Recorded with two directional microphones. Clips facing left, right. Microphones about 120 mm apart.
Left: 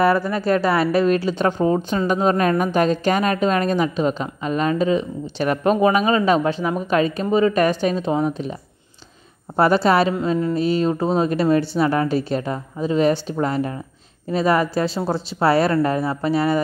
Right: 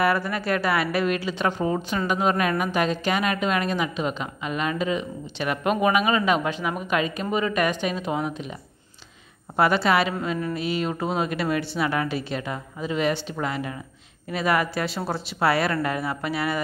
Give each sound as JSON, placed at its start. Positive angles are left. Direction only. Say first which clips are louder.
{"t": 0.0, "sound": "speech", "louder": "left 5 dB", "side_deg": 30}
{"t": 9.6, "sound": "speech", "louder": "left 4 dB", "side_deg": 35}